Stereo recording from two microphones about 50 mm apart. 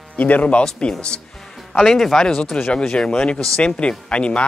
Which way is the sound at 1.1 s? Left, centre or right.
Centre.